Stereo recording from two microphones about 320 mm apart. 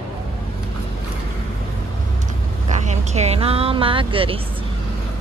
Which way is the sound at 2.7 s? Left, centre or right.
Right.